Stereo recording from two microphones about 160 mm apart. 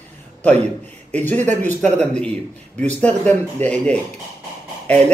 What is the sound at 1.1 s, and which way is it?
A man's voice, 10° left (ahead or behind).